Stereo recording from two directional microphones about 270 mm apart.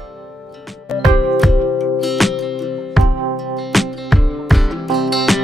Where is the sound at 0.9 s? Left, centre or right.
Centre.